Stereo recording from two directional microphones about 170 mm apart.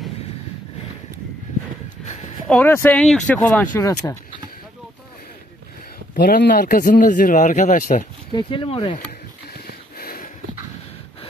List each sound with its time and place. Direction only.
2.5 s speech: 10° left (ahead or behind)
6.1 s speech: 65° left (ahead or behind)
8.3 s speech: 30° left (ahead or behind)
9.5 s wheeze: 60° left (ahead or behind)